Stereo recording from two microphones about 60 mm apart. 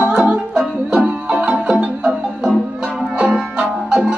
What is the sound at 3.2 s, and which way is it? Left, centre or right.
Music, centre.